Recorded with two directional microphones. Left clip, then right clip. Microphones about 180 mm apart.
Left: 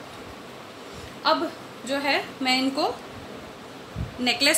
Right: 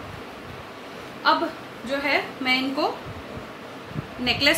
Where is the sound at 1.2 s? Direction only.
40° left (ahead or behind).